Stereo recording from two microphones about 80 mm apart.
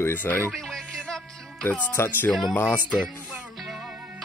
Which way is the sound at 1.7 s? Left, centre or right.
Left.